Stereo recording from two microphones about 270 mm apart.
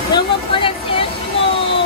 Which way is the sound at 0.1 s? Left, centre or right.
Centre.